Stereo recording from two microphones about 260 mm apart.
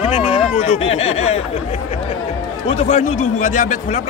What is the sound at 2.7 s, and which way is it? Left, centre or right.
Speech, left.